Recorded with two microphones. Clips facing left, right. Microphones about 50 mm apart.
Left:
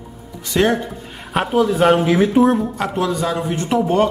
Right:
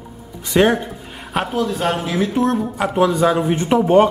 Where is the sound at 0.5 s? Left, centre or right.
Centre.